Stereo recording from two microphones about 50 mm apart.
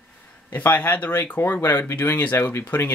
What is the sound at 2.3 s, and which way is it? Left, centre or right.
Speech, left.